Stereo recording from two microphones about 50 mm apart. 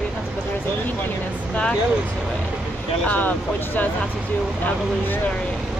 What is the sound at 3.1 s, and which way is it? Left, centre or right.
Speech, left.